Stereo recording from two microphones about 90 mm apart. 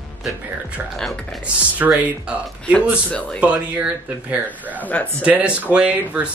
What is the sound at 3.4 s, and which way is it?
Speech, 15° right (ahead or behind).